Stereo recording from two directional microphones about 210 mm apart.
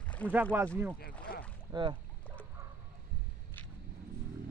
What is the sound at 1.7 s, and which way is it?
Speech, 20° right (ahead or behind).